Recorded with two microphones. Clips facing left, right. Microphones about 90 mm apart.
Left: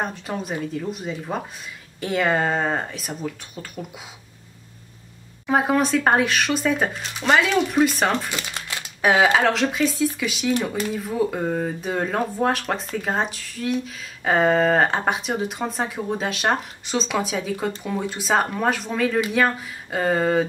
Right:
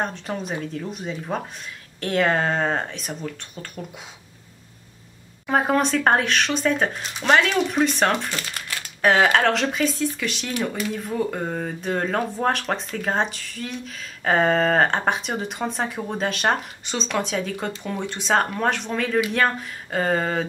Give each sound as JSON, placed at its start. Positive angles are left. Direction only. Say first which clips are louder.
{"t": 0.0, "sound": "speech", "louder": "even", "side_deg": 5}
{"t": 5.5, "sound": "speech", "louder": "left 1 dB", "side_deg": 5}
{"t": 8.4, "sound": "speech", "louder": "left 1 dB", "side_deg": 20}
{"t": 9.0, "sound": "speech", "louder": "even", "side_deg": 5}